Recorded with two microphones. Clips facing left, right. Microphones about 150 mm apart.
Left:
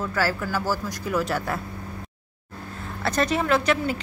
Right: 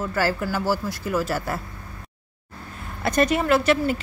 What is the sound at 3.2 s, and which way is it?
Speech, 10° right (ahead or behind).